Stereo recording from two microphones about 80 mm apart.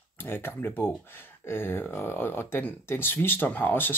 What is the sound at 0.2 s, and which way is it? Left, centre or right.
Speech, left.